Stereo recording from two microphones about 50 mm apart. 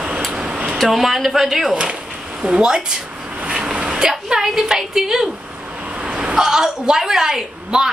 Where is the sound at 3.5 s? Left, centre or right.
Centre.